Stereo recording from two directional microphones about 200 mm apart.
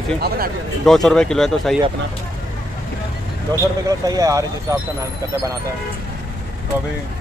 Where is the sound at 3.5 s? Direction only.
20° right (ahead or behind).